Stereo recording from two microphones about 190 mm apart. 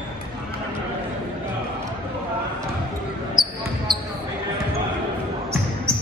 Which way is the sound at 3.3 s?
25° right (ahead or behind).